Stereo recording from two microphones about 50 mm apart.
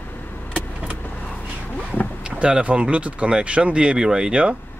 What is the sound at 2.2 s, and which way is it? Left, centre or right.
Speech, centre.